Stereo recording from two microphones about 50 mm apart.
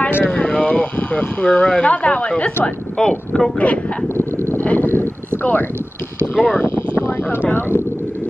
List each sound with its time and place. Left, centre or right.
0.2 s speech: left
3.0 s speech: centre
3.5 s speech: left
4.6 s a sound: left
6.6 s a sound: left
7.5 s speech: left